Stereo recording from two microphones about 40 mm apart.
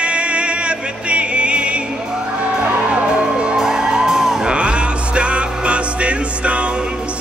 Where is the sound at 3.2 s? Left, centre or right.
Right.